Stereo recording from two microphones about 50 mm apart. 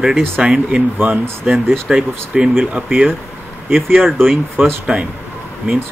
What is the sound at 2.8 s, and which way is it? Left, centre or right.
Speech, right.